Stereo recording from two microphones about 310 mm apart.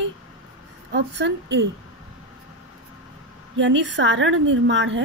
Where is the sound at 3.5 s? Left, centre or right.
Right.